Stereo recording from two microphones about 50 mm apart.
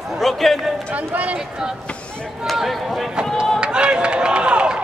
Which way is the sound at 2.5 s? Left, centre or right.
Centre.